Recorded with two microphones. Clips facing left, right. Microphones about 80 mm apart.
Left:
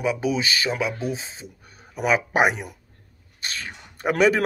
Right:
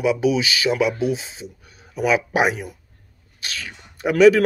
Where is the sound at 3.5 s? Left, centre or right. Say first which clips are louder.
Right 1 dB; left.